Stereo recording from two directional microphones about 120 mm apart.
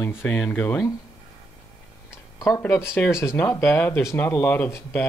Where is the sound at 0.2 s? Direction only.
15° left (ahead or behind).